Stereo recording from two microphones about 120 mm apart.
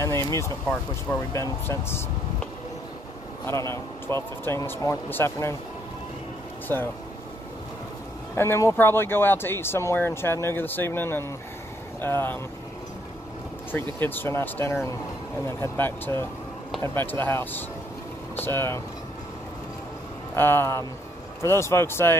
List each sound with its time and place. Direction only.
0.0 s speech: 25° left (ahead or behind)
3.4 s speech: 25° left (ahead or behind)
8.4 s speech: 20° left (ahead or behind)
13.7 s speech: 15° left (ahead or behind)
20.3 s speech: 20° left (ahead or behind)